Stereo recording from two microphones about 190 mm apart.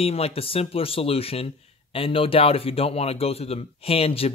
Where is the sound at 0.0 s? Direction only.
30° left (ahead or behind).